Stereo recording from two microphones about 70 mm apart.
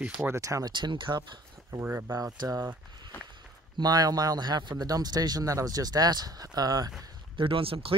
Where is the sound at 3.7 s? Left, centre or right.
Right.